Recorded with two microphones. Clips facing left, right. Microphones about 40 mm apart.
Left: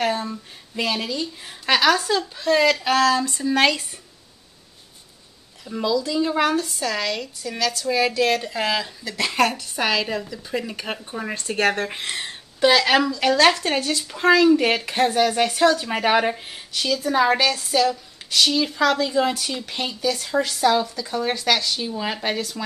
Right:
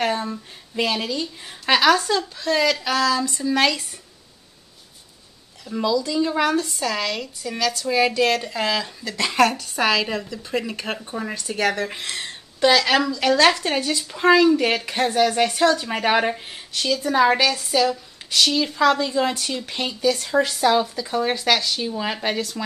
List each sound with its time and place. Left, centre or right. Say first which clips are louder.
0.0 s speech: even; centre
2.7 s a sound: left 2 dB; left
3.4 s speech: left 1 dB; centre
5.7 s speech: right 1 dB; centre
11.3 s speech: left 2 dB; left
11.9 s a sound: left 1 dB; centre
12.3 s speech: even; centre